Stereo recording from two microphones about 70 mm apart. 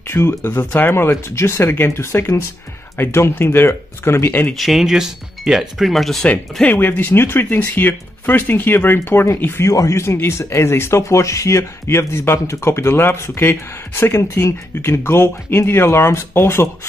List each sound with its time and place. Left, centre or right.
0.0 s speech: left
4.6 s speech: centre
6.6 s speech: left
9.7 s speech: left